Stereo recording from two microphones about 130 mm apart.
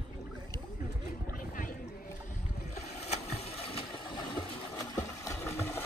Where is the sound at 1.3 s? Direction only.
90° left.